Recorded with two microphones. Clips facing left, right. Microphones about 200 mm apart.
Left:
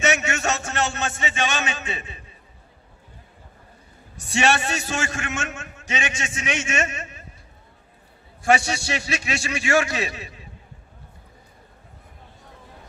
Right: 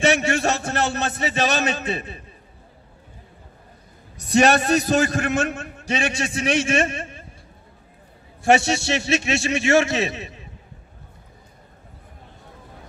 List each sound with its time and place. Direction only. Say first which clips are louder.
0.0 s a man's voice: right 4 dB; 35° right (ahead or behind)
4.2 s a man's voice: right 5 dB; 40° right (ahead or behind)
8.5 s a man's voice: right 3 dB; 25° right (ahead or behind)